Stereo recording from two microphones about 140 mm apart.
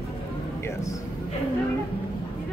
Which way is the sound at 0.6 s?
25° left (ahead or behind).